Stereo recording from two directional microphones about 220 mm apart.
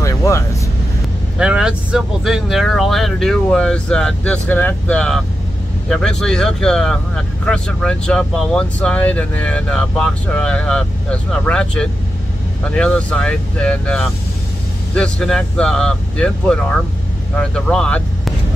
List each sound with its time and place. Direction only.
0.0 s vehicle: 15° left (ahead or behind)
1.4 s speech: 5° right (ahead or behind)